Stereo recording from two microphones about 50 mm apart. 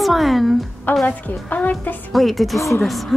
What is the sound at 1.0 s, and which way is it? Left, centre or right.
Speech, left.